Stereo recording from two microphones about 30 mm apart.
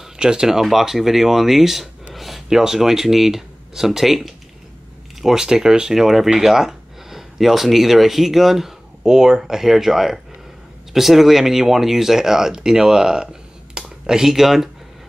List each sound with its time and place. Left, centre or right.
0.2 s speech: right
0.5 s speech: centre
2.1 s a sound: centre
2.6 s speech: centre
5.2 s speech: centre
5.9 s speech: centre
9.0 s speech: centre
12.9 s a sound: right